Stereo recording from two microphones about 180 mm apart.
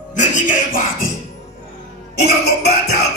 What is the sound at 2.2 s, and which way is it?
Music, 60° left (ahead or behind).